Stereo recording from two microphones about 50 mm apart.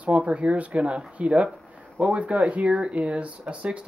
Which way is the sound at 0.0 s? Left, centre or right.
Right.